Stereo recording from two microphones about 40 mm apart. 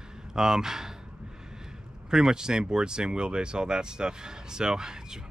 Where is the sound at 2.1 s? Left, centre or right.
Centre.